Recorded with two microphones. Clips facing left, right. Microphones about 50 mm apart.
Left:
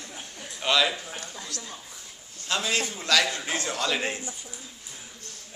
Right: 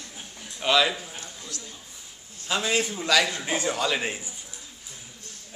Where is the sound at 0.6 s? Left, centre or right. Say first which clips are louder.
Right 2 dB; centre.